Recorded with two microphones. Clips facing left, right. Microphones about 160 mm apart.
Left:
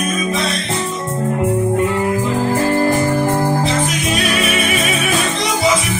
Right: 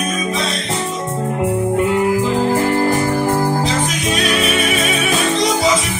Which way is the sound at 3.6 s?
Centre (ahead or behind).